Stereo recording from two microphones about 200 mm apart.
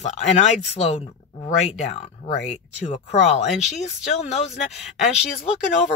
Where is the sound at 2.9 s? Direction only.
35° left (ahead or behind).